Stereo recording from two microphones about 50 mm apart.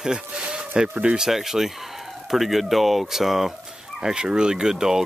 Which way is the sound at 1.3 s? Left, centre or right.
Centre.